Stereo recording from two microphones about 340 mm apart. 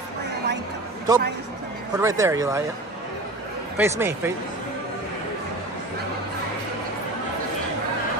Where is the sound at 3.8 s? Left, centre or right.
Centre.